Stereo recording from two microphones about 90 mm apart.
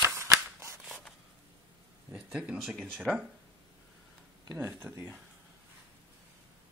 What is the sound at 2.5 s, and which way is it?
Speech, centre (ahead or behind).